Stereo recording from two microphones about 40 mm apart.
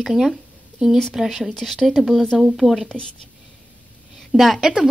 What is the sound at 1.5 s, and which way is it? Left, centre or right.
Speech, centre.